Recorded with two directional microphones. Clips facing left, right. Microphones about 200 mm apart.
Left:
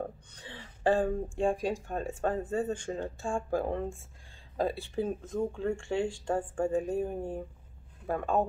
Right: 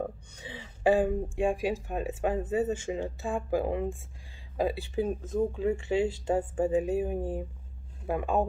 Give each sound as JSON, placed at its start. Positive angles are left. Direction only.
{"t": 0.4, "sound": "a sound", "side_deg": -10}
{"t": 1.6, "sound": "speech", "side_deg": -5}
{"t": 5.4, "sound": "speech", "side_deg": -15}
{"t": 5.8, "sound": "speech", "side_deg": -5}